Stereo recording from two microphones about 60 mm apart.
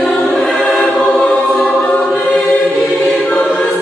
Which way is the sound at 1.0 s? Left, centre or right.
Centre.